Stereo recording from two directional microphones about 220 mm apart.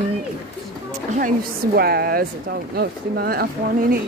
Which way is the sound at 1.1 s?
40° right (ahead or behind).